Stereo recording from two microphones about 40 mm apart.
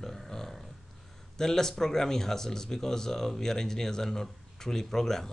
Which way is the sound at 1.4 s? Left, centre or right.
Centre.